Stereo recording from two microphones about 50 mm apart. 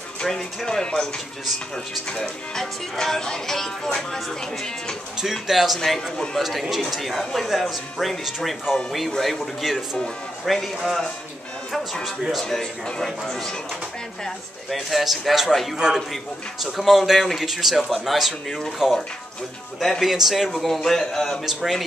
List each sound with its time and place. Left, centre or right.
0.2 s speech: centre
5.1 s speech: centre
5.8 s speech: centre
6.4 s speech: centre
12.8 s speech: centre
13.2 s speech: centre
19.8 s speech: centre
21.5 s speech: centre